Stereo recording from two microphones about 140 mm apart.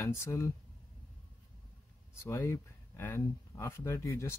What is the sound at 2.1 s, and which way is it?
Speech, 20° left (ahead or behind).